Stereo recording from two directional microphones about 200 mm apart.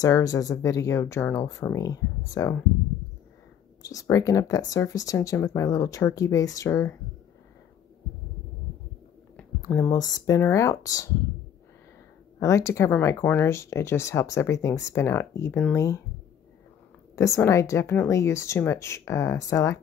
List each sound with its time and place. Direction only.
0.0 s speech: 15° left (ahead or behind)
3.8 s speech: 15° left (ahead or behind)
9.4 s speech: 10° left (ahead or behind)
12.4 s speech: 15° left (ahead or behind)
17.1 s speech: 15° left (ahead or behind)